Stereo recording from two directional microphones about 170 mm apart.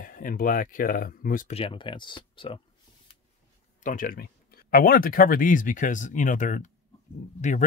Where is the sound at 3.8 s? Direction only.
50° left (ahead or behind).